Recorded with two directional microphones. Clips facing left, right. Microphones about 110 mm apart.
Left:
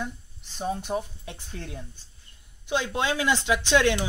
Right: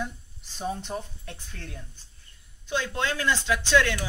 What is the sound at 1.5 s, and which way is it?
Speech, 20° left (ahead or behind).